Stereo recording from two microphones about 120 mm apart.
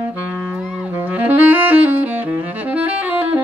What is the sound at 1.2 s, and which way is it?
Saxophone, 15° right (ahead or behind).